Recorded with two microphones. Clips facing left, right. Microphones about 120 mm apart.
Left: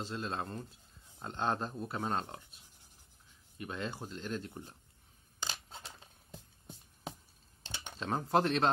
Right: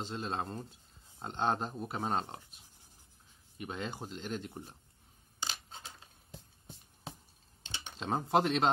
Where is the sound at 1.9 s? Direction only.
25° right (ahead or behind).